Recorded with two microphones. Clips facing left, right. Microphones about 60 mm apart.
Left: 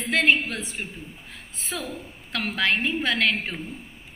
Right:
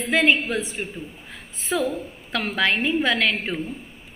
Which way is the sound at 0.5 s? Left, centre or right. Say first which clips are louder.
Right 6 dB; right.